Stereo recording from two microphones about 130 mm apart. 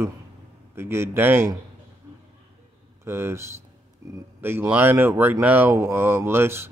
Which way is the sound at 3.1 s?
20° right (ahead or behind).